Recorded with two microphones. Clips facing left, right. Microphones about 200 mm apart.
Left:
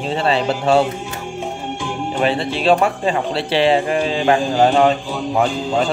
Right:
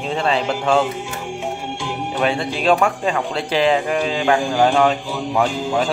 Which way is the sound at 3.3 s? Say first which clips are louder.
Left 2 dB; 35° left (ahead or behind).